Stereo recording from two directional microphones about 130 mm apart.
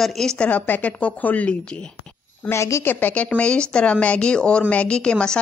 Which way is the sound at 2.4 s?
20° left (ahead or behind).